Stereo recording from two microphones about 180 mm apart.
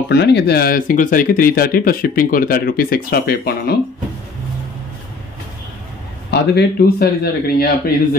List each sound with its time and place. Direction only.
0.1 s speech: 70° left (ahead or behind)
6.3 s speech: 65° left (ahead or behind)